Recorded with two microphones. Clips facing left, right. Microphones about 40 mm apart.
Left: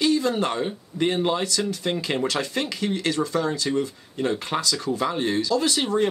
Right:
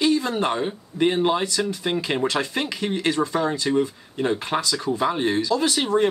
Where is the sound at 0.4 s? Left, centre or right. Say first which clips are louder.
Right 2 dB; centre.